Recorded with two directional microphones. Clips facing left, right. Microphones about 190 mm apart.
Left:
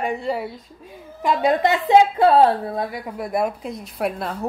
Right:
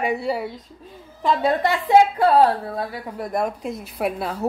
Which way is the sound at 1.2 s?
20° left (ahead or behind).